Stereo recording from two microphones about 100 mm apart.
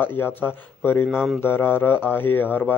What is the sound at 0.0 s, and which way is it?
Speech, 20° left (ahead or behind).